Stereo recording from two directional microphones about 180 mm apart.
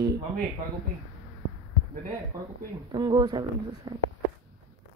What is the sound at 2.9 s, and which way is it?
A woman's voice, 20° right (ahead or behind).